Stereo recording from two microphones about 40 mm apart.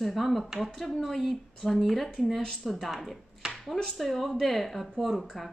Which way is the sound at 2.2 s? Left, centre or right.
Centre.